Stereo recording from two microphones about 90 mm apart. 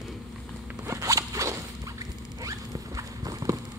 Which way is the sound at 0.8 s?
35° right (ahead or behind).